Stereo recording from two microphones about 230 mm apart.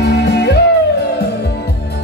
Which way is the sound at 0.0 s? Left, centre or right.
Left.